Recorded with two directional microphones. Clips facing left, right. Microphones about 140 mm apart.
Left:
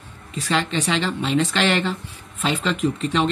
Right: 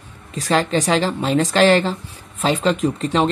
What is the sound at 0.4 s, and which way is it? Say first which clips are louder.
Speech: right 5 dB; 40° right (ahead or behind).